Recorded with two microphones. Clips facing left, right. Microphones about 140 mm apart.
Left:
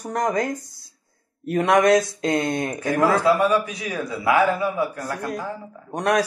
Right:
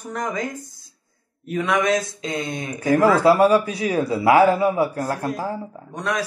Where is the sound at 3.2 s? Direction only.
30° right (ahead or behind).